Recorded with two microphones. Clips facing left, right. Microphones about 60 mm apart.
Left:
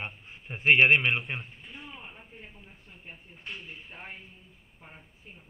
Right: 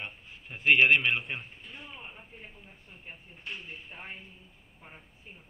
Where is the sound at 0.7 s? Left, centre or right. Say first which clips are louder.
Left 1 dB; left.